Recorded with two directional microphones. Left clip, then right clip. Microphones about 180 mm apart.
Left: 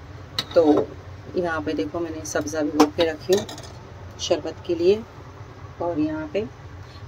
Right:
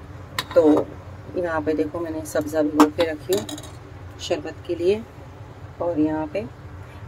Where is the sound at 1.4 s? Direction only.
10° left (ahead or behind).